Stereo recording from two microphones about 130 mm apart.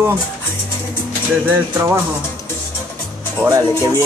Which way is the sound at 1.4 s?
20° right (ahead or behind).